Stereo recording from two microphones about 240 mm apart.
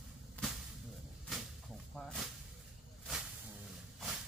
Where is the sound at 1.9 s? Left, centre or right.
Centre.